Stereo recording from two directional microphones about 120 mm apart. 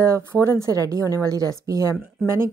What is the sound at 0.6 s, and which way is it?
Speech, 30° right (ahead or behind).